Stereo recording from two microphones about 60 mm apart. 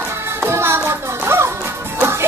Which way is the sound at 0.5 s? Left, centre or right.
Right.